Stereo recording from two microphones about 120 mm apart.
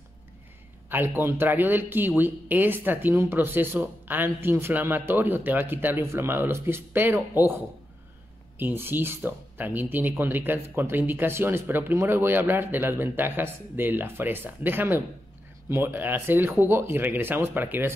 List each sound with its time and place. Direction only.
0.8 s speech: 15° right (ahead or behind)